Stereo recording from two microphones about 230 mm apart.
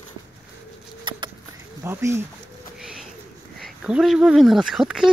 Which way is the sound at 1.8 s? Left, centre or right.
Centre.